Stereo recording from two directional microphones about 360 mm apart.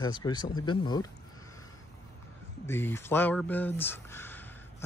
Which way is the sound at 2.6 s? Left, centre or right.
Centre.